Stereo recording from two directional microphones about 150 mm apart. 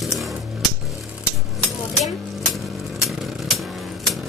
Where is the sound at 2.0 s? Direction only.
Centre (ahead or behind).